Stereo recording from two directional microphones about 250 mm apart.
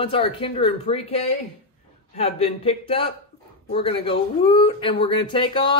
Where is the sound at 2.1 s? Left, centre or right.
Left.